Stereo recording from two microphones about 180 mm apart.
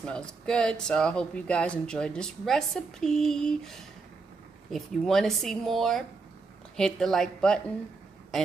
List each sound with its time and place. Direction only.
0.0 s speech: 5° left (ahead or behind)